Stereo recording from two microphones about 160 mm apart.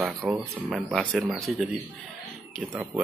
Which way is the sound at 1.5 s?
Centre (ahead or behind).